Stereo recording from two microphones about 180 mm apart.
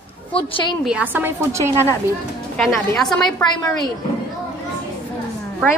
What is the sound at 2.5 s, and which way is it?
Speech, centre (ahead or behind).